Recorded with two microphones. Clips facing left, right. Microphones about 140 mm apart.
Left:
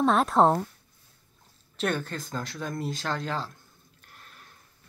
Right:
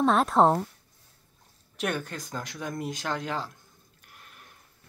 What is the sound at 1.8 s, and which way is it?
Speech, 10° right (ahead or behind).